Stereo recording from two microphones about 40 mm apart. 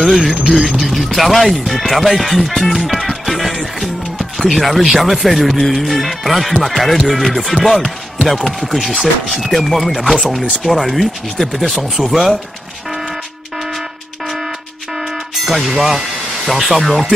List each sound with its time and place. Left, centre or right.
0.0 s speech: centre
14.2 s a sound: centre
15.0 s music: centre
15.7 s speech: centre